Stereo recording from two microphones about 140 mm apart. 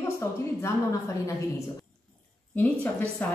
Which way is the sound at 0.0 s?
20° left (ahead or behind).